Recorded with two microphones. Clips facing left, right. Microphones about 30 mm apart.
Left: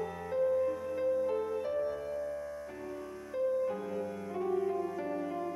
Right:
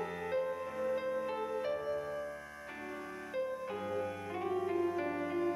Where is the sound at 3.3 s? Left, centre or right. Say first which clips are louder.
Left 7 dB; right.